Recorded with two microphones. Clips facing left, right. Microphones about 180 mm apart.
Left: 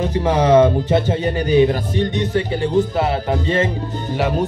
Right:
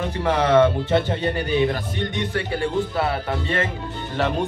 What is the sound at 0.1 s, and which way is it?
Speech, 15° left (ahead or behind).